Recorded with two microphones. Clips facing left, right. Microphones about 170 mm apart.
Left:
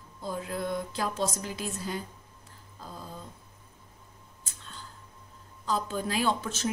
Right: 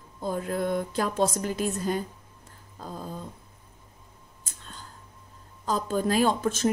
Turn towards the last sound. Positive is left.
turn(degrees=-45)  # may be behind; listen again after turning